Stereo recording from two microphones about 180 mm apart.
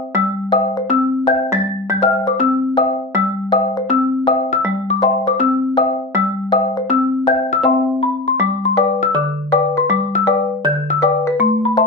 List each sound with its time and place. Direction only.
5.0 s music: 40° left (ahead or behind)
7.6 s music: 35° left (ahead or behind)